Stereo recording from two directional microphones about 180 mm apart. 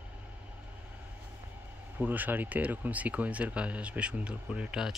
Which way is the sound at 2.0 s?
10° right (ahead or behind).